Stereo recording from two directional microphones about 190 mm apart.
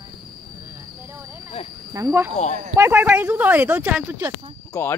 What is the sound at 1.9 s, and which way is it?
Speech, 15° right (ahead or behind).